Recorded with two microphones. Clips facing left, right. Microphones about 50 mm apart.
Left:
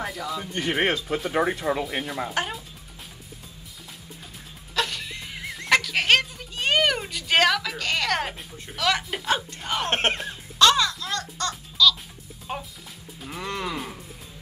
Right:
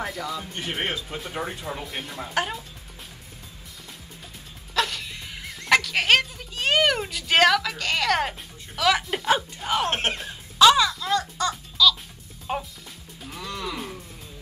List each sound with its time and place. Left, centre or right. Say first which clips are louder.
0.0 s speech: even; centre
0.7 s speech: left 6 dB; left
1.5 s speech: left 8 dB; left
1.9 s speech: left 5 dB; centre
4.7 s music: right 1 dB; centre
9.8 s speech: left 2 dB; left
10.2 s babbling: right 6 dB; centre
12.5 s music: right 4 dB; centre
13.4 s music: left 3 dB; left